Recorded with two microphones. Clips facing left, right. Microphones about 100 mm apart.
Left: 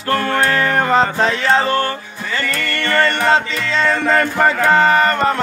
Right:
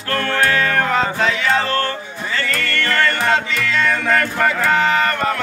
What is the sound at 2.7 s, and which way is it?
Music, 25° left (ahead or behind).